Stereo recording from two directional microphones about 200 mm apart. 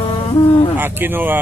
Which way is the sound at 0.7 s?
10° right (ahead or behind).